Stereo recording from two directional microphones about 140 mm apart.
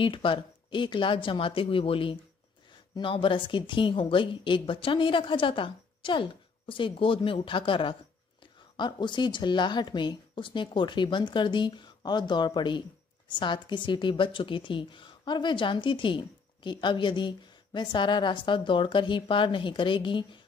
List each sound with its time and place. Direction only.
0.0 s a woman's voice: 35° left (ahead or behind)